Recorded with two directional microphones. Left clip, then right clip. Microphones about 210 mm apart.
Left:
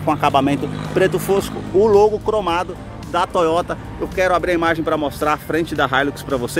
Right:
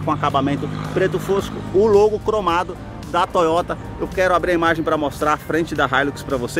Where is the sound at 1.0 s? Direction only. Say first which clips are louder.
Left 3 dB; 15° left (ahead or behind).